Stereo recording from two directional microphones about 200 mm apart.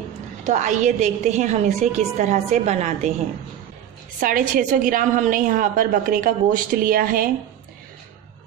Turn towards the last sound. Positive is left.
turn(degrees=-45)  # may be behind; listen again after turning